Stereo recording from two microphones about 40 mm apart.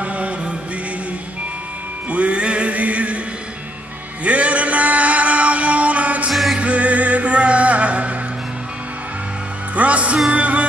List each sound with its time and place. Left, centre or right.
0.0 s mantra: right
2.0 s music: right
4.2 s music: right
6.3 s music: centre
6.6 s music: right
9.8 s music: right